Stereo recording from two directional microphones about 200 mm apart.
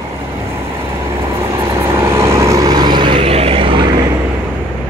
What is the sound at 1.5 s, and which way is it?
Vehicle, 15° right (ahead or behind).